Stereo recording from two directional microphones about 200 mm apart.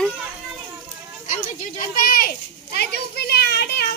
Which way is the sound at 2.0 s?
50° left (ahead or behind).